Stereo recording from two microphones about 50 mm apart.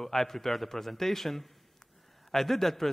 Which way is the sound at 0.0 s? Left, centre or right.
Centre.